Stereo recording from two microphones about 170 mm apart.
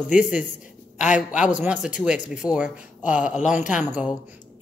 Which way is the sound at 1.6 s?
10° right (ahead or behind).